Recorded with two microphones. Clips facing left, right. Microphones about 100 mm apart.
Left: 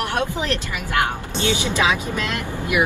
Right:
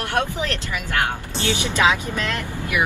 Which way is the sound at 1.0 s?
20° left (ahead or behind).